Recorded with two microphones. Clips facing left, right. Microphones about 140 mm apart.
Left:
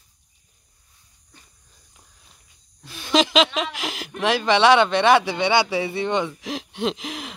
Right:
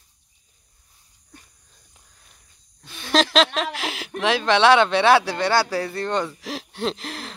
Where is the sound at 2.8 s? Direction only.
Centre (ahead or behind).